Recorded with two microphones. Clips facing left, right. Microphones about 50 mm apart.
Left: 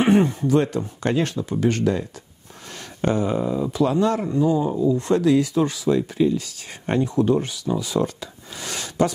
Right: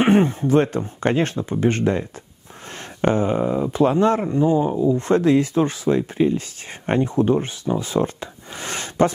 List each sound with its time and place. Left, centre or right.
0.0 s speech: right